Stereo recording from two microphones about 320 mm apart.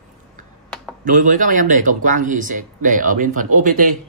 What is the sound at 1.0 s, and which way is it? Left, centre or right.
Speech, right.